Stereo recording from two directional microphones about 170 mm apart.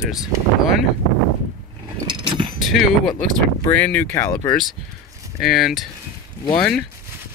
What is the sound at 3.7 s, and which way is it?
Speech, 10° left (ahead or behind).